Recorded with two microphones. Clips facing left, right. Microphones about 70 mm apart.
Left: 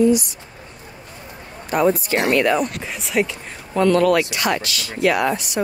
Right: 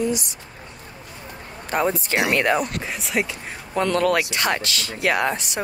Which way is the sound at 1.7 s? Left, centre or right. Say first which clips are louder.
Left 4 dB; right.